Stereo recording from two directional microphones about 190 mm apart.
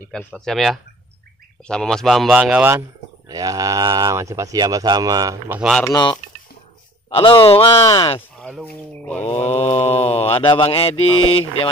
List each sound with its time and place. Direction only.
0.1 s speech: 5° left (ahead or behind)
3.3 s speech: 20° right (ahead or behind)
5.8 s speech: 20° left (ahead or behind)
8.2 s speech: 5° left (ahead or behind)
9.2 s speech: 35° left (ahead or behind)